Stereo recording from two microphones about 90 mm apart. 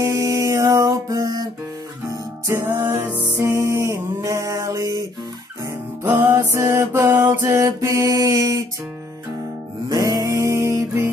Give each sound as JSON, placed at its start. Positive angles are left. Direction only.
{"t": 0.0, "sound": "music", "side_deg": -40}
{"t": 2.0, "sound": "music", "side_deg": -30}
{"t": 3.3, "sound": "music", "side_deg": -35}
{"t": 6.0, "sound": "music", "side_deg": -20}
{"t": 6.3, "sound": "music", "side_deg": -35}
{"t": 9.8, "sound": "music", "side_deg": -45}